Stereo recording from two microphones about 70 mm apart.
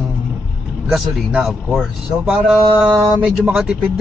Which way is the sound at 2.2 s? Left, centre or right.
Centre.